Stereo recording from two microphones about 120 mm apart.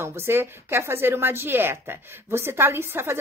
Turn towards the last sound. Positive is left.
turn(degrees=-20)  # may be behind; listen again after turning